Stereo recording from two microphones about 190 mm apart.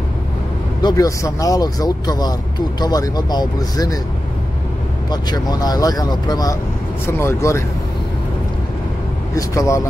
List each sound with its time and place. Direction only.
0.8 s speech: 20° left (ahead or behind)
5.1 s speech: 20° left (ahead or behind)
9.3 s speech: 15° left (ahead or behind)